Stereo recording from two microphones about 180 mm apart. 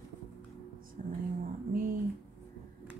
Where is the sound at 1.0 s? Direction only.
45° right (ahead or behind).